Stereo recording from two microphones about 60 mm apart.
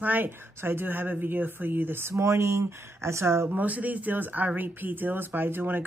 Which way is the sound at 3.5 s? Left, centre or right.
Right.